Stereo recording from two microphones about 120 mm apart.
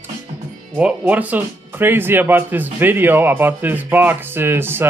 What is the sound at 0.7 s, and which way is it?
Speech, 10° right (ahead or behind).